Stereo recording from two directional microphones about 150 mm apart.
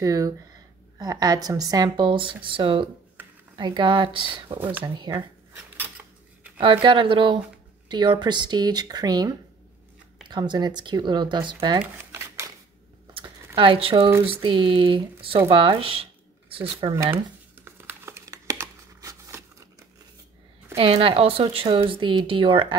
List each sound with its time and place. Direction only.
0.0 s speech: 25° right (ahead or behind)
4.6 s speech: 10° right (ahead or behind)
4.8 s speech: 30° right (ahead or behind)
5.8 s a sound: 10° right (ahead or behind)
6.6 s speech: 35° right (ahead or behind)
11.8 s a sound: 15° right (ahead or behind)
13.6 s speech: 35° right (ahead or behind)
16.9 s crumpling: 15° right (ahead or behind)
20.7 s speech: 40° right (ahead or behind)